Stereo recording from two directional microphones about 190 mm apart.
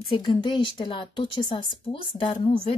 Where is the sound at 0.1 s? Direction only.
25° left (ahead or behind).